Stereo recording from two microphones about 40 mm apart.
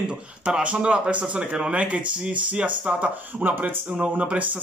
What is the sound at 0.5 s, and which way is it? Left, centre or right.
Speech, right.